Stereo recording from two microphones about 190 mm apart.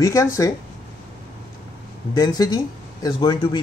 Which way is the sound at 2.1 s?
20° left (ahead or behind).